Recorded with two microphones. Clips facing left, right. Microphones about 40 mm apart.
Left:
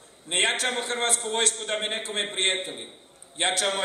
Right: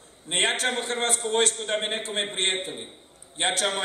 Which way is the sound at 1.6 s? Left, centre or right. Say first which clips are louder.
Right 1 dB; centre.